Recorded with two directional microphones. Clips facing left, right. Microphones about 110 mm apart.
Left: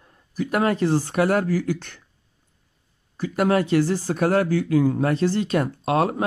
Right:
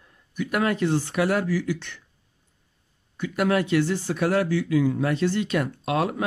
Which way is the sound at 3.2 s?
40° left (ahead or behind).